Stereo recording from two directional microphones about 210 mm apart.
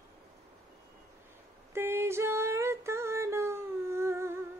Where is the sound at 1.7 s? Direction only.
10° right (ahead or behind).